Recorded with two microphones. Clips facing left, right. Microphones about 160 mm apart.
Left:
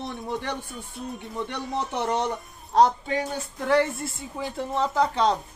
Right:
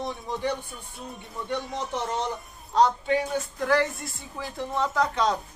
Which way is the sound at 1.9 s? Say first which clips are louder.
Left 3 dB; 60° left (ahead or behind).